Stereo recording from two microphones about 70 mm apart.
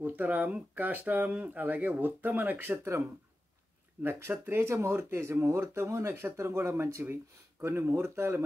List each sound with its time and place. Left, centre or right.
0.0 s a sound: right
0.7 s speech: right
2.8 s speech: right